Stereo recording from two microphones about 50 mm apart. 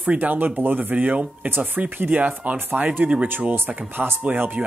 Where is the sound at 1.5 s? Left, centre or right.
Right.